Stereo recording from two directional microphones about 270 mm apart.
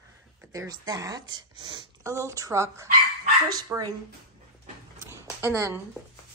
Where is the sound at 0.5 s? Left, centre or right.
Centre.